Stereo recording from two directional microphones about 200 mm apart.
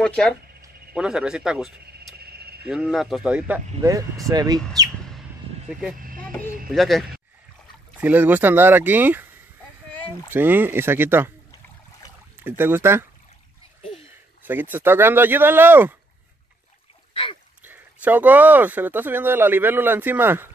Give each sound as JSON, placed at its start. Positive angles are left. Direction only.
{"t": 0.0, "sound": "speech", "side_deg": 5}
{"t": 2.1, "sound": "a sound", "side_deg": -50}
{"t": 2.6, "sound": "speech", "side_deg": -5}
{"t": 5.9, "sound": "vehicle", "side_deg": -45}
{"t": 6.7, "sound": "speech", "side_deg": 0}
{"t": 10.3, "sound": "speech", "side_deg": -10}
{"t": 12.4, "sound": "speech", "side_deg": -10}
{"t": 14.4, "sound": "speech", "side_deg": -10}
{"t": 17.1, "sound": "splash", "side_deg": 25}
{"t": 17.6, "sound": "speech", "side_deg": -10}